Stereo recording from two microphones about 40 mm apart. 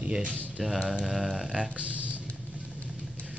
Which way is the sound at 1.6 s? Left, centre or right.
Right.